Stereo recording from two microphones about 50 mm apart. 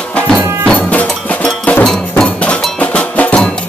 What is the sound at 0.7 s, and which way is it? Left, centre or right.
Cowbell, left.